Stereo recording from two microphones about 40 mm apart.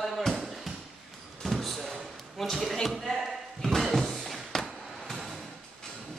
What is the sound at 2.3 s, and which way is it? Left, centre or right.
Speech, centre.